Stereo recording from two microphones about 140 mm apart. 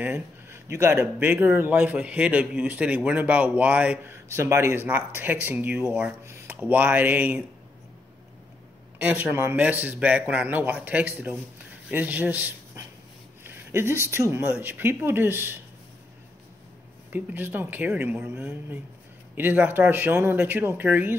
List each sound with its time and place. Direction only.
0.0 s speech: 15° right (ahead or behind)
8.9 s a man's voice: 10° right (ahead or behind)
17.1 s speech: 15° right (ahead or behind)